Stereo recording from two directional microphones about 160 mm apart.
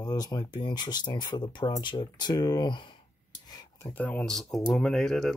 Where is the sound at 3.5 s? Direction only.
25° left (ahead or behind).